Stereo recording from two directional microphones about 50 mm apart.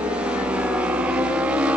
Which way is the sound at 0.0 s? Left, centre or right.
Right.